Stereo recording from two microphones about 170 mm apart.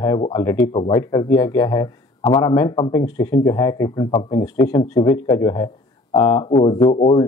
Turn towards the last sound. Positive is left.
turn(degrees=20)  # may be behind; listen again after turning